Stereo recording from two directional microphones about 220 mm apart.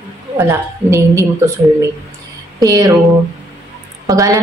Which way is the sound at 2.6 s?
15° right (ahead or behind).